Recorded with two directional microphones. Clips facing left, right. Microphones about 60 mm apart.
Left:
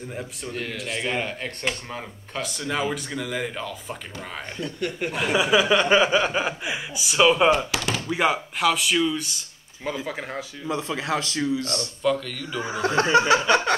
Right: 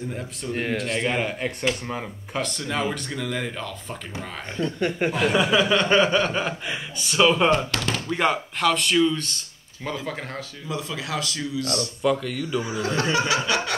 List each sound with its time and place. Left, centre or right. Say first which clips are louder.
0.7 s speech: right 1 dB; centre
2.4 s speech: left 1 dB; centre
4.7 s speech: right 4 dB; right
5.1 s chuckle: left 2 dB; centre
8.0 s speech: even; centre
10.0 s chuckle: left 1 dB; centre
10.7 s speech: left 3 dB; left
12.0 s speech: even; centre
12.6 s speech: left 7 dB; left